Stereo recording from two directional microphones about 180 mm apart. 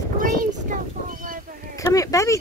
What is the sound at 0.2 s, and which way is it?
Child singing, 50° right (ahead or behind).